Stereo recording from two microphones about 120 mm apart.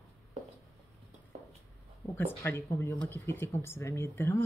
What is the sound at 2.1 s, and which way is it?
Speech, 20° left (ahead or behind).